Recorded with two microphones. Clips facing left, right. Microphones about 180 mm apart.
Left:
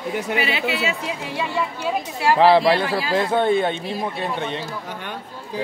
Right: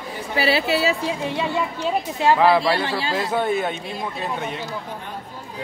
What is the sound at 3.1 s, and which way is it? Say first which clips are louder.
Speech: left 5 dB; 30° left (ahead or behind).